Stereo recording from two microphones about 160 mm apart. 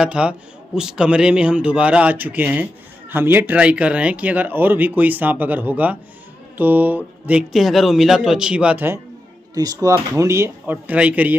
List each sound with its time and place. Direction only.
0.0 s a man's voice: 5° right (ahead or behind)